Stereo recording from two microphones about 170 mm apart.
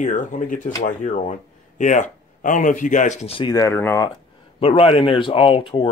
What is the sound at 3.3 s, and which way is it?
Speech, 25° left (ahead or behind).